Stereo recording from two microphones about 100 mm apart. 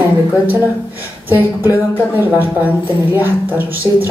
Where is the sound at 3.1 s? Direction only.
20° right (ahead or behind).